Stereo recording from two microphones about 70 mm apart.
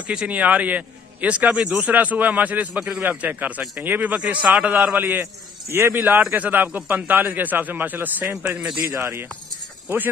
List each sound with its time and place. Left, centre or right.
0.1 s a man's voice: centre
5.0 s a man's voice: right
8.5 s speech: centre
8.8 s a man's voice: right